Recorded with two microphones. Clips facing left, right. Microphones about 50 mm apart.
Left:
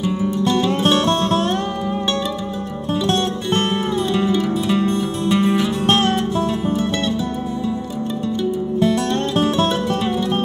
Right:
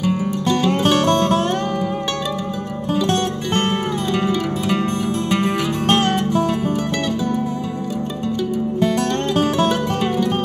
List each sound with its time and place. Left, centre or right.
3.7 s music: right